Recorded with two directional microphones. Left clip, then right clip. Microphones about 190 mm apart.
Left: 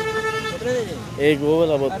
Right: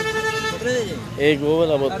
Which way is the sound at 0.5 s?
50° right (ahead or behind).